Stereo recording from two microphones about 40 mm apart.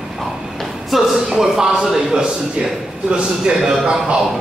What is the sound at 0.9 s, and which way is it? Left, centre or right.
A man's voice, centre.